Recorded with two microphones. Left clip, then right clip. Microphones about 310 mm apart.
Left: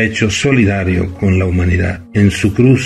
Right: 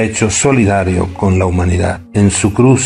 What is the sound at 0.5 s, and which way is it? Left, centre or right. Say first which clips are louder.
Speech: right 5 dB; right.